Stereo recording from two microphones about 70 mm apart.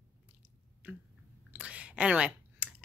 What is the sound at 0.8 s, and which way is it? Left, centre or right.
Squish, right.